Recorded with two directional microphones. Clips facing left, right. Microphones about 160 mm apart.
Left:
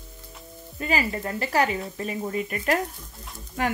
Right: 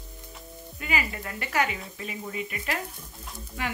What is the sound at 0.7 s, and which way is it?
Speech, 35° left (ahead or behind).